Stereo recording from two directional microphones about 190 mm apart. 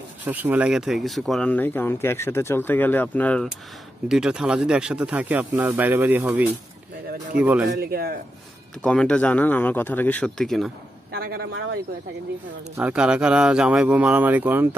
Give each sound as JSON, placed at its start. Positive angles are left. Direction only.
{"t": 0.2, "sound": "speech", "side_deg": -10}
{"t": 4.1, "sound": "speech", "side_deg": -5}
{"t": 7.7, "sound": "speech", "side_deg": -55}
{"t": 8.8, "sound": "speech", "side_deg": 5}
{"t": 11.1, "sound": "speech", "side_deg": -55}
{"t": 12.7, "sound": "speech", "side_deg": -5}